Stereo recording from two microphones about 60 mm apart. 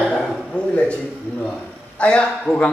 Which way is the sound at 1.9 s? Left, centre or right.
Centre.